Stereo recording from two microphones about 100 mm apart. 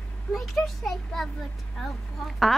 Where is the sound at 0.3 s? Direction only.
Centre (ahead or behind).